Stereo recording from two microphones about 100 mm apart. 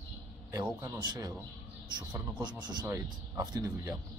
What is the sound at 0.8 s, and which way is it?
Speech, 45° right (ahead or behind).